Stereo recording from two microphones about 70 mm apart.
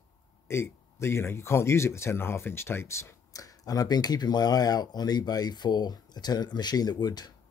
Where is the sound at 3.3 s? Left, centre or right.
Left.